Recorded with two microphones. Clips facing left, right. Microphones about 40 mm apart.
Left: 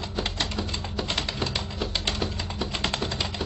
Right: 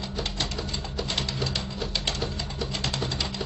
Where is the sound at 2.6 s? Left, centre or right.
Left.